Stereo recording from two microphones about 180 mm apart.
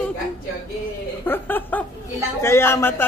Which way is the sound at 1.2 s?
10° left (ahead or behind).